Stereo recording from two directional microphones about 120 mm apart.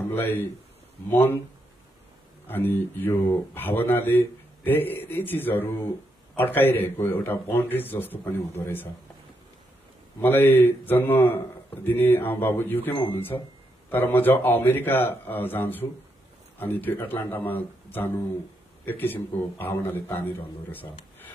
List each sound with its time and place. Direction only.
0.1 s speech: 15° left (ahead or behind)
2.4 s a man's voice: 15° left (ahead or behind)
10.2 s a man's voice: 15° left (ahead or behind)